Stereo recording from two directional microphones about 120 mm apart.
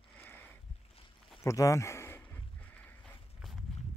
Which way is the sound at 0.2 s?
15° left (ahead or behind).